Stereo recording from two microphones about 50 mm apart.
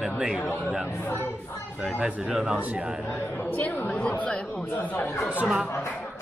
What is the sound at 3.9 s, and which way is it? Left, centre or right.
Speech, left.